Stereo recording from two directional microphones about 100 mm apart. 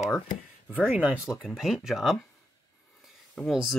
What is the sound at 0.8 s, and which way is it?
Speech, 15° right (ahead or behind).